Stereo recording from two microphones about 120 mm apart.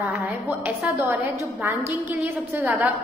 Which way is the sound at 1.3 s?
20° right (ahead or behind).